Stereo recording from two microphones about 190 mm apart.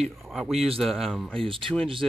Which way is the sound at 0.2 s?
Centre (ahead or behind).